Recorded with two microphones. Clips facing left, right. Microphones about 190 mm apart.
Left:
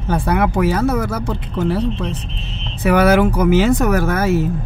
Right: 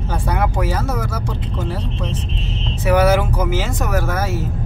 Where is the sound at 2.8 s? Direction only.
60° left (ahead or behind).